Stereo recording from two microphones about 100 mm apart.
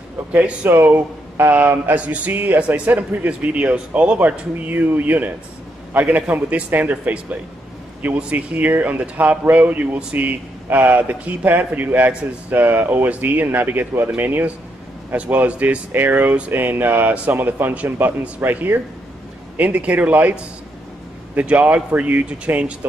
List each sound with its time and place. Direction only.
0.3 s speech: 15° right (ahead or behind)